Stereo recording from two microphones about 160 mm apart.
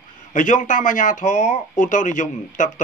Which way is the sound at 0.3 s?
50° left (ahead or behind).